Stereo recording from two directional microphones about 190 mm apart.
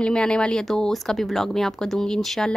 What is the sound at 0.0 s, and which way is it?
Speech, 5° left (ahead or behind).